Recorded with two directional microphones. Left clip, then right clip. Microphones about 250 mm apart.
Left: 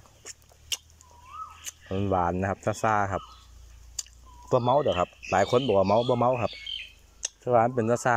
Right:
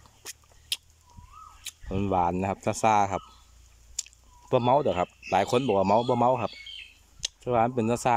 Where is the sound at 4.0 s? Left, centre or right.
Centre.